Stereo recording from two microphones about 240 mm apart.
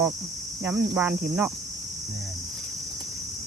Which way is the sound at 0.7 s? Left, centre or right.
Centre.